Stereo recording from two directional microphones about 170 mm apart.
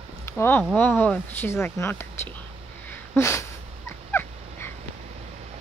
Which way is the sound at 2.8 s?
15° left (ahead or behind).